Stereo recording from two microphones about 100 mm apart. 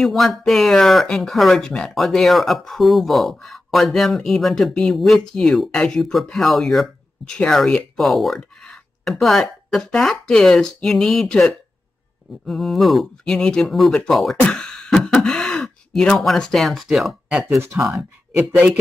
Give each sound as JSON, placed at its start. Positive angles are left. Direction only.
{"t": 0.0, "sound": "speech", "side_deg": 0}
{"t": 14.4, "sound": "a sound", "side_deg": 10}
{"t": 15.2, "sound": "speech", "side_deg": 10}
{"t": 17.8, "sound": "speech", "side_deg": -15}